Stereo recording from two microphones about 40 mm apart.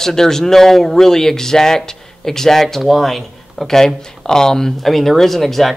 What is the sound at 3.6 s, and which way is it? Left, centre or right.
Speech, centre.